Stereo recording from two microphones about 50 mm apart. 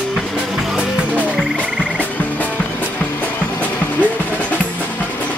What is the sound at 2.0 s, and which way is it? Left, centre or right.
Frog, left.